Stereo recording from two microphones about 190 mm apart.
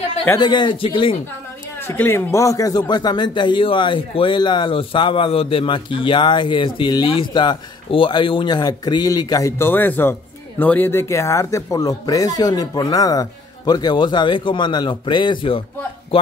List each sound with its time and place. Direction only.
0.4 s speech: 25° left (ahead or behind)
1.8 s speech: 10° left (ahead or behind)